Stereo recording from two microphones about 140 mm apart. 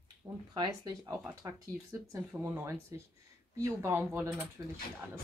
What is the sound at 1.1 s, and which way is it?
A woman's voice, 20° right (ahead or behind).